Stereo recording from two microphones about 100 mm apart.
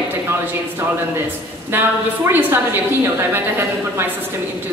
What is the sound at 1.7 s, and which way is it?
Speech, 20° right (ahead or behind).